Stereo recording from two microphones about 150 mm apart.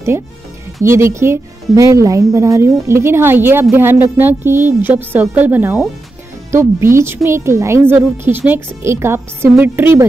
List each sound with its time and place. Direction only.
0.8 s speech: 20° right (ahead or behind)